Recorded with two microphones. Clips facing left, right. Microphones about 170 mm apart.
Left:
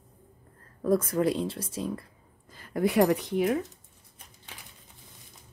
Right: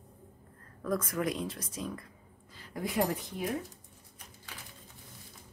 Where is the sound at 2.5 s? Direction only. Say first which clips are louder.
Left 9 dB; 55° left (ahead or behind); by 3.5 s 75° left (ahead or behind).